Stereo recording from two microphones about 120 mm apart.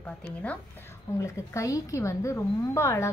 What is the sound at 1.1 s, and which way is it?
A woman's voice, 25° left (ahead or behind).